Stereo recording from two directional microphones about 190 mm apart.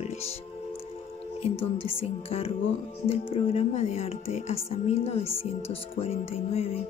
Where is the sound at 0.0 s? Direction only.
35° left (ahead or behind).